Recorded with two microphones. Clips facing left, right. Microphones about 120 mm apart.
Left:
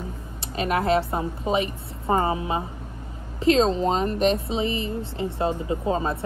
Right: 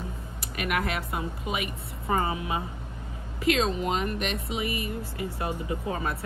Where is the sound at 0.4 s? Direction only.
30° left (ahead or behind).